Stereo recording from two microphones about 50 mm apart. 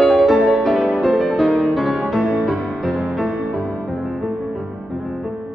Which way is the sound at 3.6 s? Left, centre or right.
Left.